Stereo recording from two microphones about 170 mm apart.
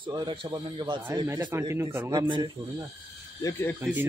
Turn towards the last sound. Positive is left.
turn(degrees=-10)  # may be behind; listen again after turning